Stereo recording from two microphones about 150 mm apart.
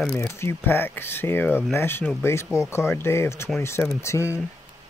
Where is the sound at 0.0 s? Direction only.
15° left (ahead or behind).